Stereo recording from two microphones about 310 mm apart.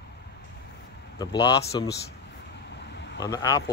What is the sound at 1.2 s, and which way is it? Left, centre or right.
Speech, centre.